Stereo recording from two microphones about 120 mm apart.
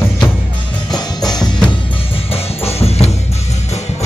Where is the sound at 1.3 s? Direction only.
35° left (ahead or behind).